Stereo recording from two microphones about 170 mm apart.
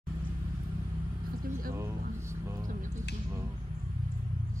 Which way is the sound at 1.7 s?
15° right (ahead or behind).